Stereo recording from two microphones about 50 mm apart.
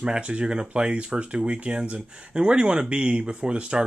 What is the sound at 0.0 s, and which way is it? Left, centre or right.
Speech, right.